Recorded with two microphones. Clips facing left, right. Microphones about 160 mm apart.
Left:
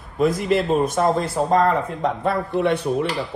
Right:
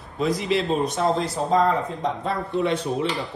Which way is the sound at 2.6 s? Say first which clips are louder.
Left 3 dB; 60° left (ahead or behind).